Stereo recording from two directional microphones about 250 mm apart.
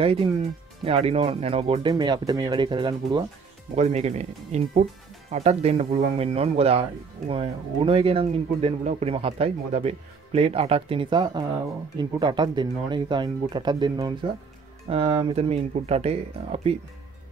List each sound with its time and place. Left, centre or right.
0.0 s speech: right